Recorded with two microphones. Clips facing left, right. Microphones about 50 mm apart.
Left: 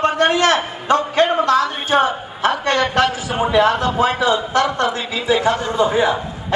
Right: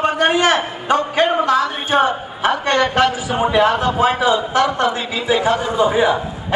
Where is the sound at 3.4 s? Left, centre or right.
Centre.